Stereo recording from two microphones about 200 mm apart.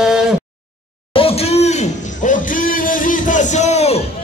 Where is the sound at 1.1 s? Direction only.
30° left (ahead or behind).